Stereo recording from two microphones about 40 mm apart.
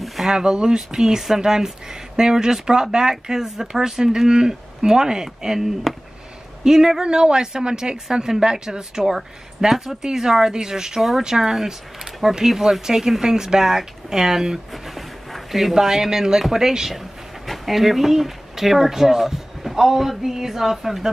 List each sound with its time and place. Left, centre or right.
0.0 s a sound: centre
0.3 s speech: centre
11.0 s speech: centre
11.2 s speech: centre
14.7 s speech: centre